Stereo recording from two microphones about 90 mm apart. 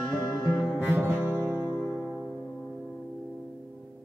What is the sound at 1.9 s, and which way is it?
Music, centre (ahead or behind).